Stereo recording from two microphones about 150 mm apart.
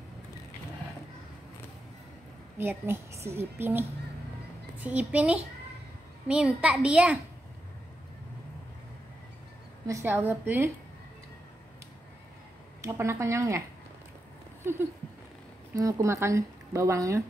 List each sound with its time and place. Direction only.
2.5 s a woman's voice: 15° right (ahead or behind)
9.8 s a woman's voice: 20° right (ahead or behind)
12.8 s speech: 15° right (ahead or behind)
14.6 s a sound: 15° right (ahead or behind)
15.7 s speech: 20° right (ahead or behind)